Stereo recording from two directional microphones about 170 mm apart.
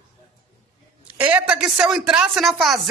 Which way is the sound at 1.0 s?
10° right (ahead or behind).